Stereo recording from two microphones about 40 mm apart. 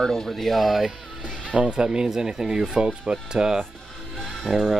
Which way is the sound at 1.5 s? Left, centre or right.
Right.